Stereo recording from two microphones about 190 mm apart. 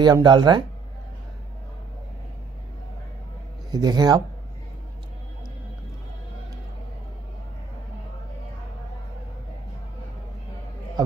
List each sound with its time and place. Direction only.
0.0 s speech: 20° right (ahead or behind)
3.7 s speech: 20° right (ahead or behind)